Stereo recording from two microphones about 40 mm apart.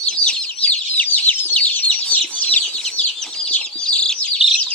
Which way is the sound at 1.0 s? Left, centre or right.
Left.